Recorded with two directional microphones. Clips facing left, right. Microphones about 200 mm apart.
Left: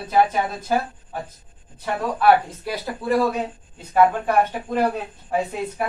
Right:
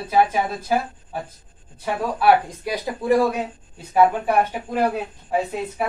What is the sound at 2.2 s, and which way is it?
Speech, 15° right (ahead or behind).